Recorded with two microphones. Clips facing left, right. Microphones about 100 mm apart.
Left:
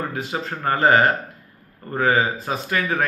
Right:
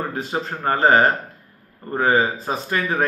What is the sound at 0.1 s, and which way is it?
A man's voice, 30° right (ahead or behind).